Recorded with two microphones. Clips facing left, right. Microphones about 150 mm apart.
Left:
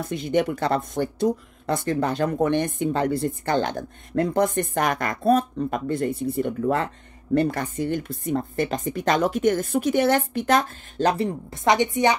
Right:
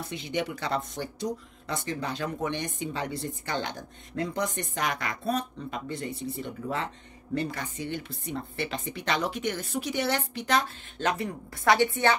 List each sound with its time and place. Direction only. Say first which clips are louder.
0.0 s speech: left 9 dB; 50° left (ahead or behind); by 12.2 s 15° left (ahead or behind)